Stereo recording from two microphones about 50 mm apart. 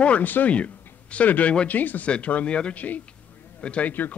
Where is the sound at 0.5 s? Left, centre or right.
Left.